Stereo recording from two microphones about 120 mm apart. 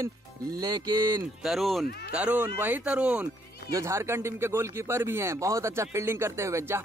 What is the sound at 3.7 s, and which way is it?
Speech, 25° right (ahead or behind).